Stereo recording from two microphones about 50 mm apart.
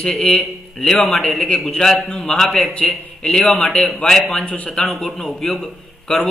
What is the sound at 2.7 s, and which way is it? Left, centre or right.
Speech, centre.